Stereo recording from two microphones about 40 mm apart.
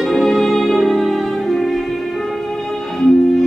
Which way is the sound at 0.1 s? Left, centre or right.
Centre.